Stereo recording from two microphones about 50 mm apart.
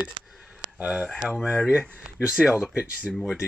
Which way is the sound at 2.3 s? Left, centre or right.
Centre.